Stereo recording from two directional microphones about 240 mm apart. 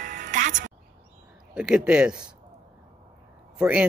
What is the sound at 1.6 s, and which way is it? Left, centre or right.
Speech, centre.